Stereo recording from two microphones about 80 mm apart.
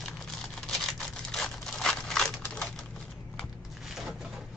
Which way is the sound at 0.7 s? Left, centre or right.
Centre.